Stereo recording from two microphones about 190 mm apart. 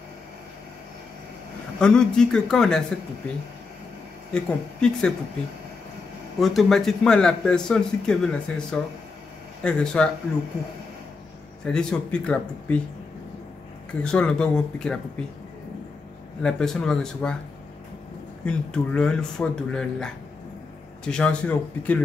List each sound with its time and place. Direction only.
1.8 s speech: 5° left (ahead or behind)
4.3 s speech: 5° left (ahead or behind)
6.4 s speech: centre (ahead or behind)
11.6 s speech: 5° left (ahead or behind)
14.0 s speech: 5° left (ahead or behind)
16.4 s speech: 5° left (ahead or behind)
18.4 s speech: 5° left (ahead or behind)